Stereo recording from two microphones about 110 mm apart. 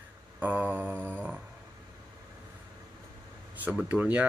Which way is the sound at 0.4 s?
15° right (ahead or behind).